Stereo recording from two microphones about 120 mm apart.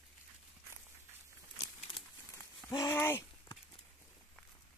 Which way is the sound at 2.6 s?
30° left (ahead or behind).